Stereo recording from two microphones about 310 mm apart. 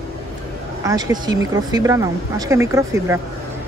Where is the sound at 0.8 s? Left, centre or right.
Centre.